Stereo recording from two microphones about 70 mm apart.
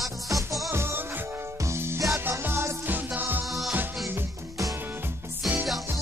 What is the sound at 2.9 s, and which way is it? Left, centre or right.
Music, right.